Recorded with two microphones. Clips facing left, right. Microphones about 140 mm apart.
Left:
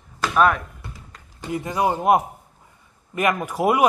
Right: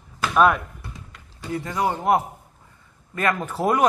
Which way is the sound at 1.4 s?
20° left (ahead or behind).